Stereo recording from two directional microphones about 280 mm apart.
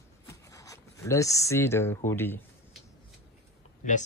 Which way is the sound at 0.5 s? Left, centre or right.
Centre.